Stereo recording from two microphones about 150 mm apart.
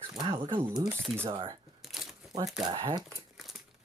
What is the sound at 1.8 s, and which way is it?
Crumpling, centre (ahead or behind).